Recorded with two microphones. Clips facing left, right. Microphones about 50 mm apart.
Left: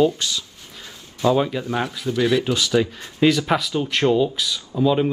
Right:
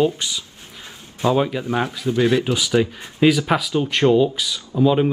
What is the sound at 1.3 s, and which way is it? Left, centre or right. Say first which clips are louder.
Speech: right 1 dB; centre.